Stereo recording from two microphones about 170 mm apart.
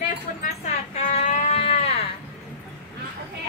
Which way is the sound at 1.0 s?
45° left (ahead or behind).